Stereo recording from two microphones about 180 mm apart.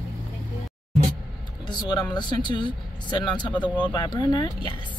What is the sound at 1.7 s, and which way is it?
Speech, 25° left (ahead or behind).